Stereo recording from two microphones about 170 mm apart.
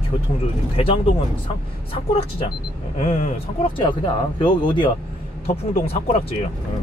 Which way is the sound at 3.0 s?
50° left (ahead or behind).